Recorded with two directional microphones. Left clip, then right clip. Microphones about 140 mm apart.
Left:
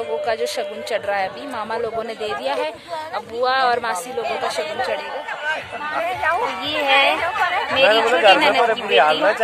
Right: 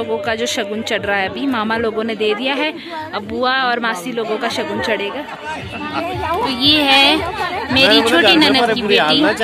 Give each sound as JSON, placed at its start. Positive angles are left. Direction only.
{"t": 0.3, "sound": "speech", "side_deg": 15}
{"t": 6.8, "sound": "a woman's voice", "side_deg": 0}
{"t": 7.7, "sound": "a woman's voice", "side_deg": 50}
{"t": 8.0, "sound": "speech", "side_deg": 65}
{"t": 8.4, "sound": "a woman's voice", "side_deg": 5}
{"t": 8.6, "sound": "a woman's voice", "side_deg": 60}